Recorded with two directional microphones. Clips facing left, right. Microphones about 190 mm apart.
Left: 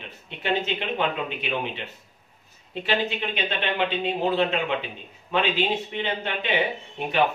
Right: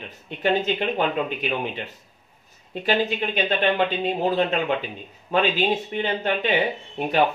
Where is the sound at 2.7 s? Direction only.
40° right (ahead or behind).